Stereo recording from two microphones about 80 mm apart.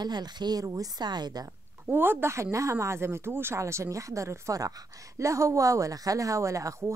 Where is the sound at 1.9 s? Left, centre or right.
Right.